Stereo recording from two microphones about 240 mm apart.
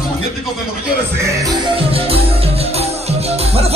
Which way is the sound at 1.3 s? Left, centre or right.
Centre.